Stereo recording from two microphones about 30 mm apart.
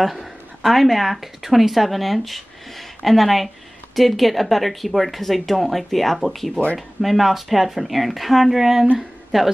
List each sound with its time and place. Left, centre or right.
0.7 s speech: centre